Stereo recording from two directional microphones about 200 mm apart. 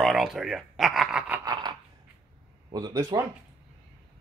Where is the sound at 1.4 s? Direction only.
20° right (ahead or behind).